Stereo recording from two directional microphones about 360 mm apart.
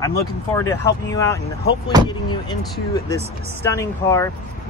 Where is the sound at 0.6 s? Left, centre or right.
Centre.